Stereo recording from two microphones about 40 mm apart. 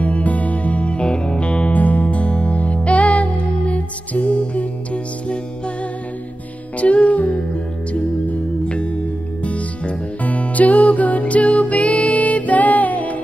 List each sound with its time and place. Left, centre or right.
0.0 s music: left
6.8 s music: left